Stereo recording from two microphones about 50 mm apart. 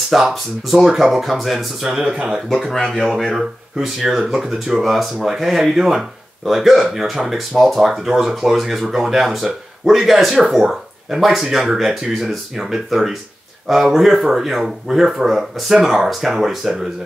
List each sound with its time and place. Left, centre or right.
0.1 s speech: centre
1.9 s speech: centre
2.5 s speech: centre
3.3 s speech: centre